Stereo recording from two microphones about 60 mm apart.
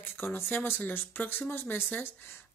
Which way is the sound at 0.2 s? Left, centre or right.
Left.